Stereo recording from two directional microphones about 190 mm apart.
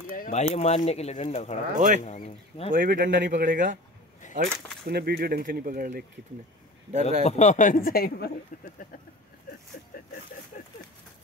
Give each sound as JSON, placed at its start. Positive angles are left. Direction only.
{"t": 0.1, "sound": "speech", "side_deg": 40}
{"t": 2.7, "sound": "speech", "side_deg": -45}
{"t": 4.4, "sound": "speech", "side_deg": -55}
{"t": 6.9, "sound": "speech", "side_deg": -35}
{"t": 7.2, "sound": "speech", "side_deg": 40}
{"t": 9.5, "sound": "vehicle", "side_deg": 50}